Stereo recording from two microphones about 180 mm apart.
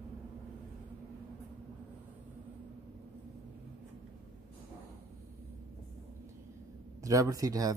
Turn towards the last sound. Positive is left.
turn(degrees=-20)  # may be behind; listen again after turning